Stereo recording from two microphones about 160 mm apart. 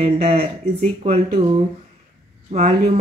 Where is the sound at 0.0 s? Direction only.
40° right (ahead or behind).